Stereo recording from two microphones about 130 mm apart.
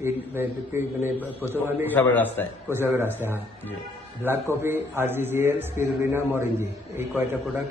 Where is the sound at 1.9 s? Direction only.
15° left (ahead or behind).